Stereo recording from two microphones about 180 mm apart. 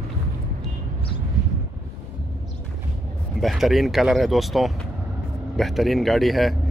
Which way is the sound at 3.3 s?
Centre (ahead or behind).